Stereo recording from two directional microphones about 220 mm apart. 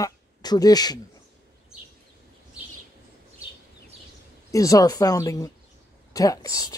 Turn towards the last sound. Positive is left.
turn(degrees=15)  # may be behind; listen again after turning